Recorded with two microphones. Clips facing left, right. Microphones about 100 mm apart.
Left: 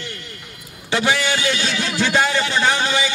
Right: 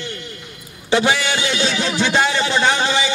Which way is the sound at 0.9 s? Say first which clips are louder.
Right 2 dB; 25° right (ahead or behind).